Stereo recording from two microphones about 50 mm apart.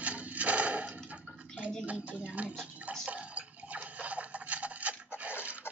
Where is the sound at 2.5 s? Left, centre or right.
Centre.